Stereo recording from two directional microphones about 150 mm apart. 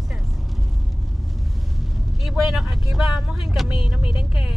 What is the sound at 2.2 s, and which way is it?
Speech, centre (ahead or behind).